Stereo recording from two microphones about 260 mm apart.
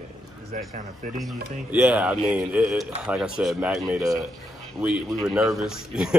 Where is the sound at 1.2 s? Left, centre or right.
Centre.